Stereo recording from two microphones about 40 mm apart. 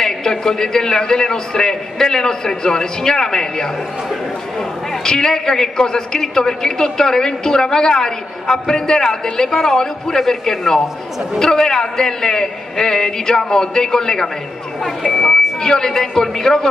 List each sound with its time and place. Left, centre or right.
0.0 s a man's voice: centre
15.2 s a man's voice: centre